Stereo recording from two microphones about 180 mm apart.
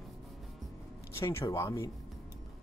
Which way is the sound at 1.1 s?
15° left (ahead or behind).